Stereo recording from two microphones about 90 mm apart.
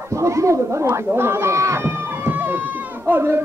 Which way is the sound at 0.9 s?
25° right (ahead or behind).